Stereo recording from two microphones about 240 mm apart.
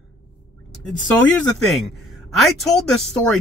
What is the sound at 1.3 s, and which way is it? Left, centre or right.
Speech, centre.